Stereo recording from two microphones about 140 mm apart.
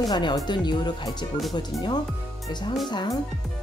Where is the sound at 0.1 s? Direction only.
30° left (ahead or behind).